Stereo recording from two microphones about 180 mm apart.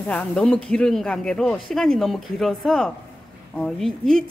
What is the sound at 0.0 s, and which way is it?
A woman's voice, 5° left (ahead or behind).